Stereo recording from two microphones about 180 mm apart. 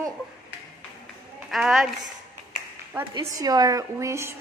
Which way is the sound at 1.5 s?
Centre (ahead or behind).